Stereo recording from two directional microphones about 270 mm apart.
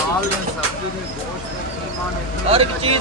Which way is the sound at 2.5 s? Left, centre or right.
Right.